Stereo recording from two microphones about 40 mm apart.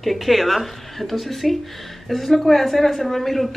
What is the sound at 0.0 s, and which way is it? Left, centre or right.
Speech, centre.